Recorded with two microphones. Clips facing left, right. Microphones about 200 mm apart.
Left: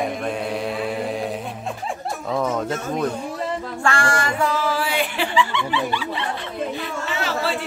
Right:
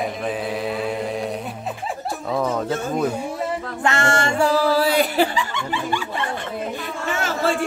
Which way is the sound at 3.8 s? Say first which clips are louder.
Right 2 dB; 25° right (ahead or behind).